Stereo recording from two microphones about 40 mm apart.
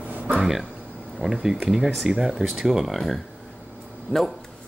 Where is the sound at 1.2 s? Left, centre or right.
Centre.